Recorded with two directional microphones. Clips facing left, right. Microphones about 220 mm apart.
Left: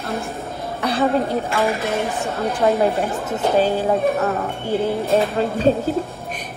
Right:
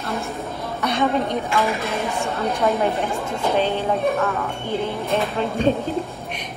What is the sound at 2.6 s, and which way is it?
Speech, 30° left (ahead or behind).